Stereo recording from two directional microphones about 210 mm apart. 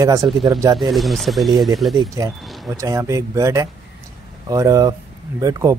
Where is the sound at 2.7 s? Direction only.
15° right (ahead or behind).